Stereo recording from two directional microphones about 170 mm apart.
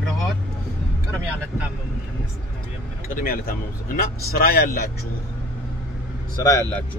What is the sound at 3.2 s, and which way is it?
Speech, 60° left (ahead or behind).